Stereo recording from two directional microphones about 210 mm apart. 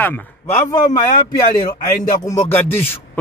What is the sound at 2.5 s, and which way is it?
Speech, 10° left (ahead or behind).